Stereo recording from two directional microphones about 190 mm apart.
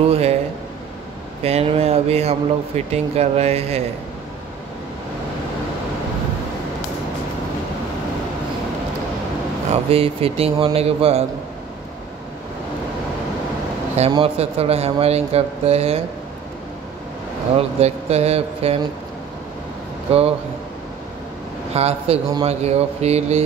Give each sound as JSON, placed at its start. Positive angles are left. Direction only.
{"t": 0.0, "sound": "speech", "side_deg": -30}
{"t": 1.4, "sound": "speech", "side_deg": -30}
{"t": 9.7, "sound": "speech", "side_deg": -30}
{"t": 13.9, "sound": "speech", "side_deg": -30}
{"t": 17.6, "sound": "speech", "side_deg": -35}
{"t": 20.1, "sound": "a man's voice", "side_deg": -30}
{"t": 21.7, "sound": "speech", "side_deg": -30}